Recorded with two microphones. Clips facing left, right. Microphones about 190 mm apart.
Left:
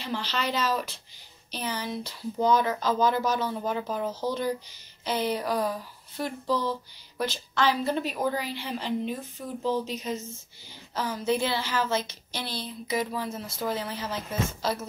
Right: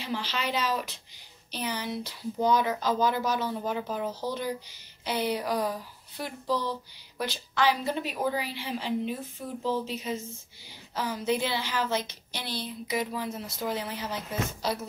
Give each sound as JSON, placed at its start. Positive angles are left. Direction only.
{"t": 0.0, "sound": "a woman's voice", "side_deg": -10}